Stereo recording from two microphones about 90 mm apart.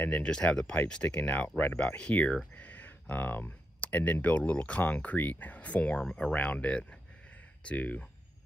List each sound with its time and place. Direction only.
0.0 s speech: 15° left (ahead or behind)